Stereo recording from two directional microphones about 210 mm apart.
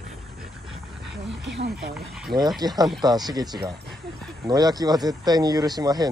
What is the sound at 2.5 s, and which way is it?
Speech, 20° right (ahead or behind).